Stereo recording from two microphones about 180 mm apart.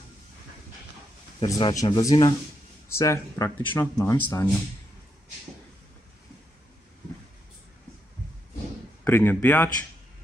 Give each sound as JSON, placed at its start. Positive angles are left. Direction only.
{"t": 1.4, "sound": "speech", "side_deg": 20}
{"t": 9.0, "sound": "speech", "side_deg": 10}